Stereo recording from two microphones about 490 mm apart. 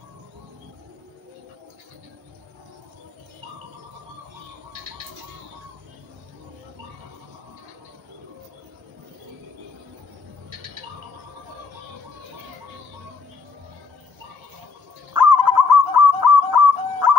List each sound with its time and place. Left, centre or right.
15.1 s bird: right